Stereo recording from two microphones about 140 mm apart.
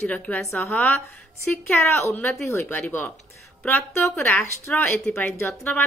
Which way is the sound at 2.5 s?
20° left (ahead or behind).